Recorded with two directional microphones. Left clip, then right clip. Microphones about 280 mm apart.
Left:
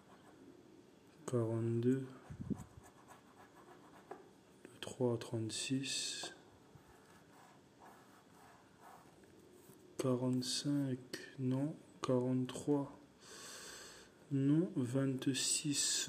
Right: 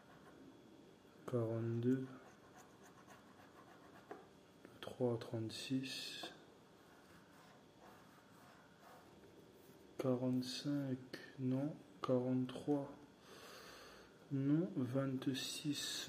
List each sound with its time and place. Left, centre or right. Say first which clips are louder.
1.2 s speech: left 3 dB; centre
4.7 s speech: left 2 dB; centre
9.9 s speech: left 2 dB; centre